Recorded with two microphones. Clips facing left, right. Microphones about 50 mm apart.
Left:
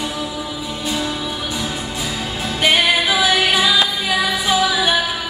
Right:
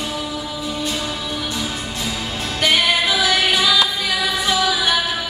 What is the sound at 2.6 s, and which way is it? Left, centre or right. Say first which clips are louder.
Music: left 2 dB; centre.